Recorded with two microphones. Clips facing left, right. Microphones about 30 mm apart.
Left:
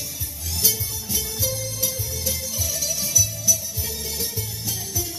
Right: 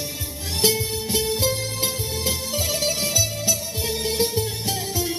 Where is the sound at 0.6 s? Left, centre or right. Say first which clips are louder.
Right 6 dB; right.